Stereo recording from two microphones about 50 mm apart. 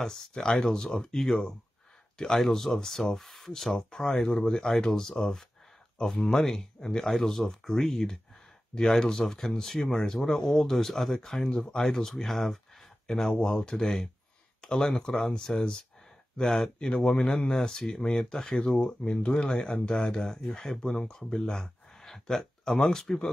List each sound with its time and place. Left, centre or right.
0.0 s speech: centre